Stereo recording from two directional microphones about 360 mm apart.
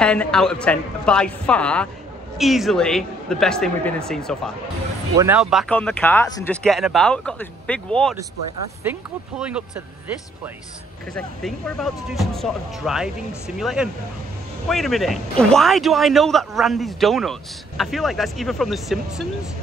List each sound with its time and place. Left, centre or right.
0.0 s speech: centre
11.1 s speech: centre